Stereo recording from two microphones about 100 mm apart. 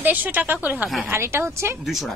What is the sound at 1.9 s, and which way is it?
Speech, centre (ahead or behind).